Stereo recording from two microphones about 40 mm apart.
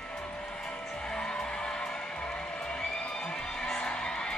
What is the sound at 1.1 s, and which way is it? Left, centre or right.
Skidding, centre.